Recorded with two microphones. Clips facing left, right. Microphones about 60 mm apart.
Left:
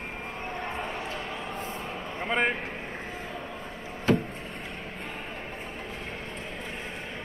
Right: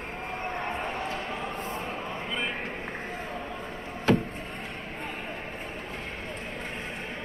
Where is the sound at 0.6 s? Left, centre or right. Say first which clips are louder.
Right 1 dB; right.